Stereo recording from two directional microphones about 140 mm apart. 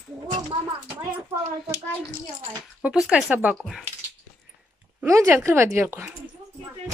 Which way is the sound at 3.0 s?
10° right (ahead or behind).